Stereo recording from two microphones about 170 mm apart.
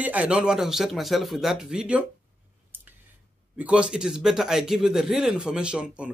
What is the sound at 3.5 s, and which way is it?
A man's voice, 10° right (ahead or behind).